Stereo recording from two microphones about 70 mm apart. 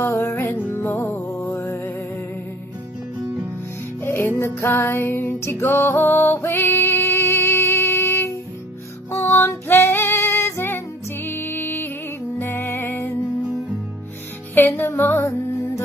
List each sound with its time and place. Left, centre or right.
0.0 s music: left
1.4 s music: left
4.0 s music: left
9.7 s female singing: left
12.4 s music: left
14.7 s music: left